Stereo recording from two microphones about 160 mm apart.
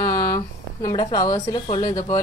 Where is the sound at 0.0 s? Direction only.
15° left (ahead or behind).